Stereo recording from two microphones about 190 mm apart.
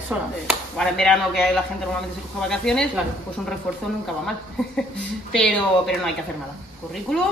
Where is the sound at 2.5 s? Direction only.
5° left (ahead or behind).